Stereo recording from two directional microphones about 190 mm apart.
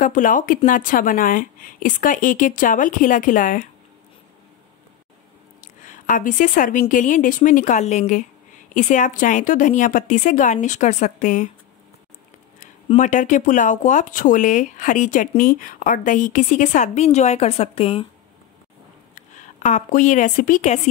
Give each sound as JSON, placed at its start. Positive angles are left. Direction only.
{"t": 0.0, "sound": "a woman's voice", "side_deg": 45}
{"t": 5.9, "sound": "a woman's voice", "side_deg": 45}
{"t": 12.5, "sound": "speech", "side_deg": 40}
{"t": 19.1, "sound": "a woman's voice", "side_deg": 40}